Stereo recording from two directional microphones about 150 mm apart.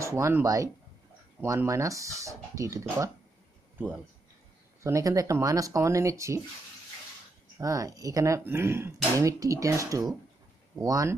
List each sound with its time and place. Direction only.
0.0 s speech: 20° right (ahead or behind)
4.8 s speech: 20° right (ahead or behind)
7.6 s speech: 20° right (ahead or behind)